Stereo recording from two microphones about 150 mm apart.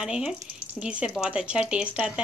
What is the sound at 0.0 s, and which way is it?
Speech, 5° right (ahead or behind).